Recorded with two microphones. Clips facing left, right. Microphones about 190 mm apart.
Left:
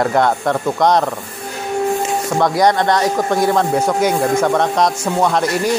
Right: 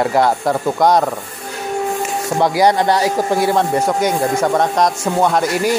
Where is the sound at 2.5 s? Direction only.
5° right (ahead or behind).